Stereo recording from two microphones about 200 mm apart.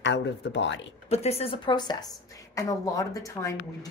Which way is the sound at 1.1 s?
30° left (ahead or behind).